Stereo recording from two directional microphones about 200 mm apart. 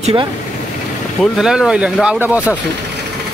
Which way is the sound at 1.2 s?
5° right (ahead or behind).